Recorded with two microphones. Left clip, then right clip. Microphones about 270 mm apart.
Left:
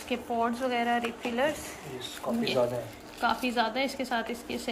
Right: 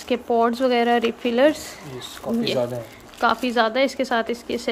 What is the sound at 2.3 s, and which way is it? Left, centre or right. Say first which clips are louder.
Speech: right 6 dB; right.